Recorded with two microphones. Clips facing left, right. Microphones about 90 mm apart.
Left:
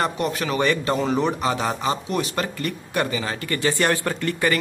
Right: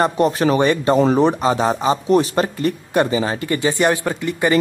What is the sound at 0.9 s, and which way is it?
Speech, 40° right (ahead or behind).